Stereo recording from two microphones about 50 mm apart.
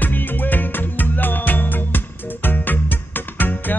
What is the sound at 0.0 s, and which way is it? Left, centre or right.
Music, left.